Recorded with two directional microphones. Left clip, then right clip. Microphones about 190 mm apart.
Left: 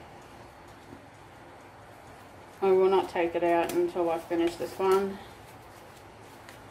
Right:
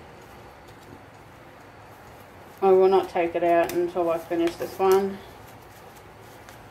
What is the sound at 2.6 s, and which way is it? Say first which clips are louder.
Speech: right 5 dB; 15° left (ahead or behind).